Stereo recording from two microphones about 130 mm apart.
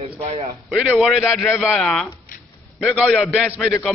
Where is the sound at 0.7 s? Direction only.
5° right (ahead or behind).